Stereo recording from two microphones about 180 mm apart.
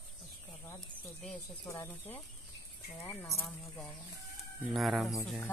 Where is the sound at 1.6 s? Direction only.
15° left (ahead or behind).